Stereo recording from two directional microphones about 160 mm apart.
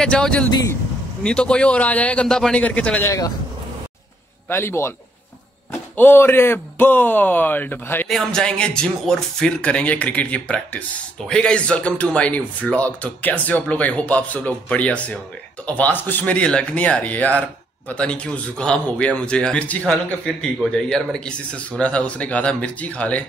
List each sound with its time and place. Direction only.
0.0 s speech: 5° left (ahead or behind)
3.1 s speech: 20° left (ahead or behind)
4.5 s speech: 15° left (ahead or behind)